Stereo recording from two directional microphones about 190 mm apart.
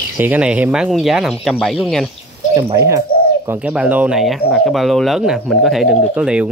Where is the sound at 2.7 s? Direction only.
15° right (ahead or behind).